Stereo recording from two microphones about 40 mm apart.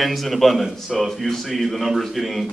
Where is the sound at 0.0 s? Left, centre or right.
Centre.